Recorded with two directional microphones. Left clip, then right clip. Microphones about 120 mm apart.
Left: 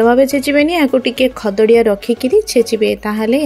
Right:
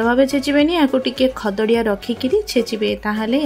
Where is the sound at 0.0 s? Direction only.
45° left (ahead or behind).